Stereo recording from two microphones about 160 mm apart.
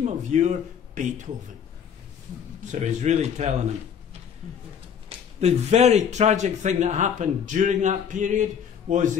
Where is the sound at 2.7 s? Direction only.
45° right (ahead or behind).